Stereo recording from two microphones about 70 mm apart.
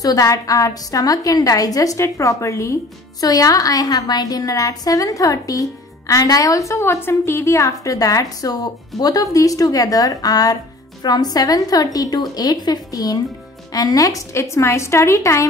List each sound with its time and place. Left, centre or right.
0.0 s a woman's voice: left
3.2 s a woman's voice: left